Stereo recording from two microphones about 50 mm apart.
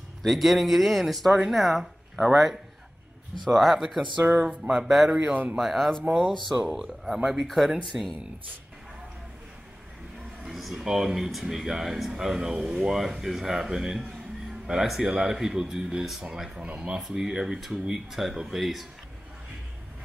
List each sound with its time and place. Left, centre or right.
0.2 s speech: centre
4.4 s speech: centre
5.6 s speech: centre
10.4 s speech: centre
16.5 s speech: right
17.1 s speech: centre